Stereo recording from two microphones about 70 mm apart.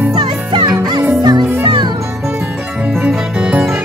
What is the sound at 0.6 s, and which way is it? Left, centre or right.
Music, right.